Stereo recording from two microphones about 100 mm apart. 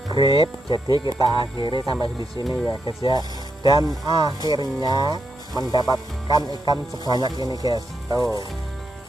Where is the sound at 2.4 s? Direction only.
Centre (ahead or behind).